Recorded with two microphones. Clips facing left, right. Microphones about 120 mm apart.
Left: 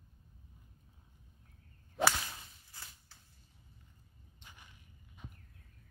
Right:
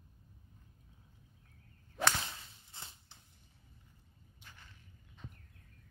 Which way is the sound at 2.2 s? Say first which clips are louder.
Right 1 dB; 25° right (ahead or behind).